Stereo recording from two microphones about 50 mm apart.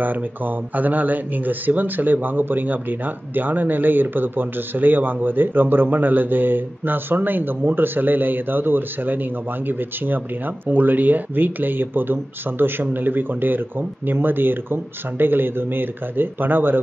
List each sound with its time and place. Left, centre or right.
0.0 s speech: right